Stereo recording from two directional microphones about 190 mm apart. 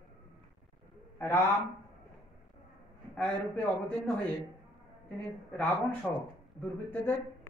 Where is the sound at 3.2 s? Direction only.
10° left (ahead or behind).